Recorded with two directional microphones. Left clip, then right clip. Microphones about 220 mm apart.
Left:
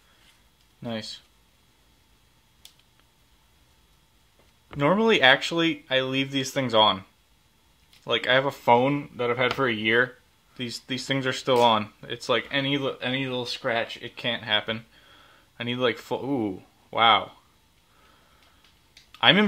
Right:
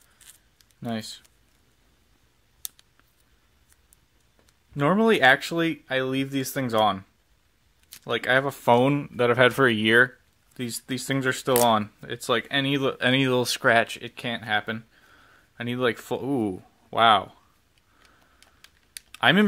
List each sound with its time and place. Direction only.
0.8 s speech: 40° right (ahead or behind)
4.7 s speech: 35° right (ahead or behind)
19.1 s typing: 35° right (ahead or behind)